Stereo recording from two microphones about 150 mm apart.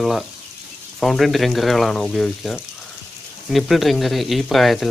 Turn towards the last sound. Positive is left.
turn(degrees=0)  # may be behind; listen again after turning